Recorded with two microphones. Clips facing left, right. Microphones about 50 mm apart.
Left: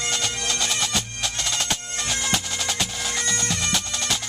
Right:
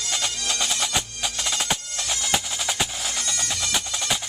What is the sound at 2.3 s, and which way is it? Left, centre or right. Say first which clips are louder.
Music: even; centre.